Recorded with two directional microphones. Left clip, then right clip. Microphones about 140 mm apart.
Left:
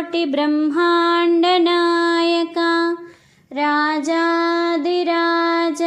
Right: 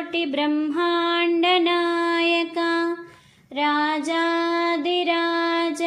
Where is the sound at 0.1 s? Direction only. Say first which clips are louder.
Left 4 dB; 40° left (ahead or behind).